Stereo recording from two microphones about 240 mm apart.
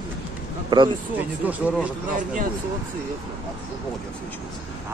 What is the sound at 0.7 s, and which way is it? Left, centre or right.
Speech, centre.